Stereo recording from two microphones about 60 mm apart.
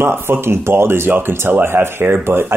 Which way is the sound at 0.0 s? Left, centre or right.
Right.